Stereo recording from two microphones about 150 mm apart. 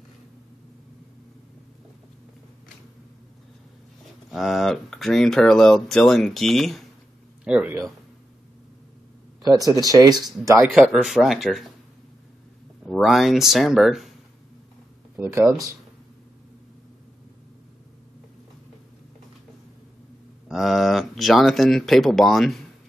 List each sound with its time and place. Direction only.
4.3 s speech: centre (ahead or behind)
9.8 s speech: 25° right (ahead or behind)
10.7 s speech: 5° right (ahead or behind)
12.8 s speech: centre (ahead or behind)
15.1 s speech: 15° right (ahead or behind)
20.4 s speech: centre (ahead or behind)